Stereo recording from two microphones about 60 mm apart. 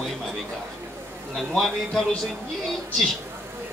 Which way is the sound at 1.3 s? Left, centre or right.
Centre.